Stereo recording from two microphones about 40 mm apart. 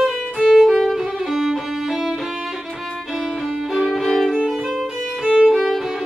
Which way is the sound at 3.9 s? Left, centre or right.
Centre.